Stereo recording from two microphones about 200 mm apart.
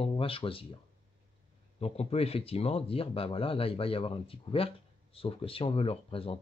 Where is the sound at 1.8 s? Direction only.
30° left (ahead or behind).